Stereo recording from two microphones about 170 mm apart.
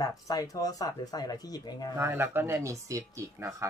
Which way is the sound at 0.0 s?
20° left (ahead or behind).